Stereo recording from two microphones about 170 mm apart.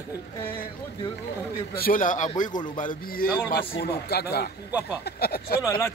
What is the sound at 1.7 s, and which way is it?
A man's voice, 60° left (ahead or behind).